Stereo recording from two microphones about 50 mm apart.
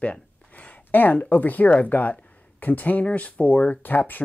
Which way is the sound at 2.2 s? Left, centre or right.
Left.